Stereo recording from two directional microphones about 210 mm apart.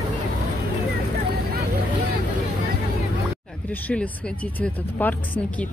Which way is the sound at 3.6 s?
5° left (ahead or behind).